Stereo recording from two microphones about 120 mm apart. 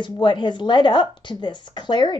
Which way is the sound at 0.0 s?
40° left (ahead or behind).